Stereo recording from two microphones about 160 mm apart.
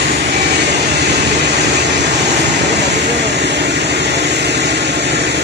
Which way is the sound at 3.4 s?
90° right.